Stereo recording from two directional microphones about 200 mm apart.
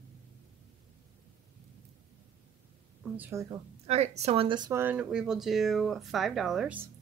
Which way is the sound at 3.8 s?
35° right (ahead or behind).